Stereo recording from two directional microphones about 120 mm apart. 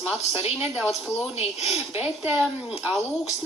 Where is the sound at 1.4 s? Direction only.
55° left (ahead or behind).